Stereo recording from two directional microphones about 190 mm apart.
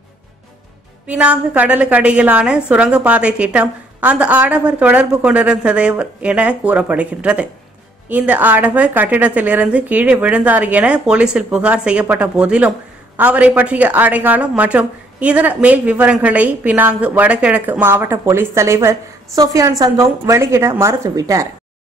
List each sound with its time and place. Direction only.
1.0 s a woman's voice: 5° right (ahead or behind)